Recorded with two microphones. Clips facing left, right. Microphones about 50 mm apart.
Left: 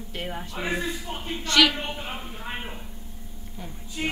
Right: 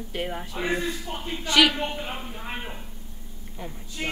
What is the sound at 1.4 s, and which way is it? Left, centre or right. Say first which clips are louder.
A man's voice: right 1 dB; centre.